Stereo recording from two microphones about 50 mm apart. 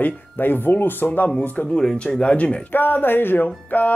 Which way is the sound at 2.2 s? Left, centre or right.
Left.